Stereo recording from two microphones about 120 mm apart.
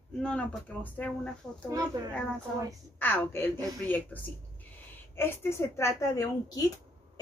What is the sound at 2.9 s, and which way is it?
Speech, 15° left (ahead or behind).